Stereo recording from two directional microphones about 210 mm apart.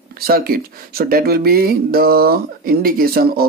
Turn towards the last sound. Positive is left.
turn(degrees=-45)  # may be behind; listen again after turning